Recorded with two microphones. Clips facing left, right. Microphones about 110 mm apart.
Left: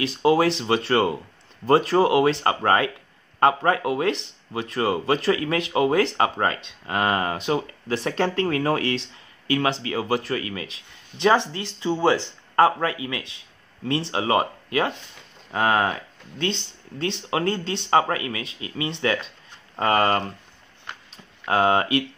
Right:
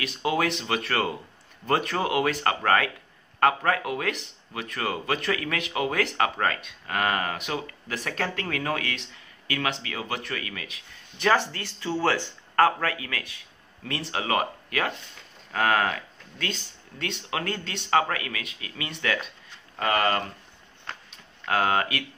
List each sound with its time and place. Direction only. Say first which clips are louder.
0.0 s speech: left 7 dB; 30° left (ahead or behind)
21.1 s tick-tock: left 4 dB; 25° left (ahead or behind)